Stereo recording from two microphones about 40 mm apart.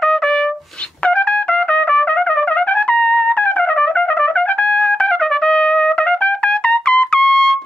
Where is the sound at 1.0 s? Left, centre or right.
Left.